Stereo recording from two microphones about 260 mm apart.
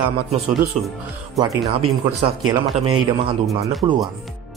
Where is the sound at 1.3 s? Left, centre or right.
Centre.